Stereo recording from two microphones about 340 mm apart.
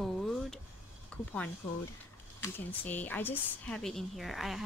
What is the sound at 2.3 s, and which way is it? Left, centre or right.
Speech, centre.